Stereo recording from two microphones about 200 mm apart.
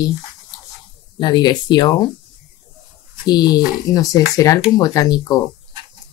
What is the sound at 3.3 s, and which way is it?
Speech, 20° left (ahead or behind).